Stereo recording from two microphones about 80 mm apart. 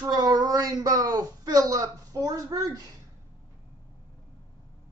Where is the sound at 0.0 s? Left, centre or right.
Right.